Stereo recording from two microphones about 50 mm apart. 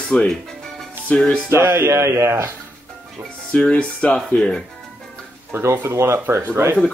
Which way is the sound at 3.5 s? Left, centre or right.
Left.